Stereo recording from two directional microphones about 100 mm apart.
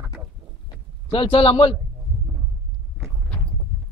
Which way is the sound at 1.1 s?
65° left (ahead or behind).